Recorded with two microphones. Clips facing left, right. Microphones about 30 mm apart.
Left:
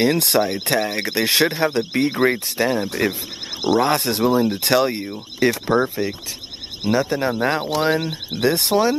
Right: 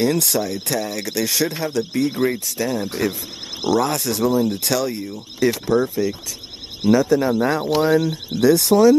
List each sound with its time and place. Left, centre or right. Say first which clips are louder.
0.0 s speech: left 2 dB; left